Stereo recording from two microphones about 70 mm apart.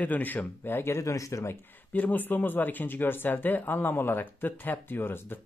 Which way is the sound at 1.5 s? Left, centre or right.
Left.